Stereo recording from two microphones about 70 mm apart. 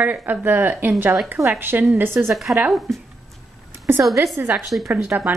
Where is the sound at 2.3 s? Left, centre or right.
Centre.